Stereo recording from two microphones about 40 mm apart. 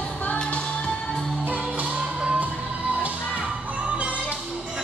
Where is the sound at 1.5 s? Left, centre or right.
Right.